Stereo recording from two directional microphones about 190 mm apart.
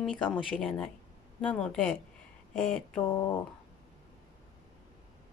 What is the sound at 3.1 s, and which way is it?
Speech, 25° left (ahead or behind).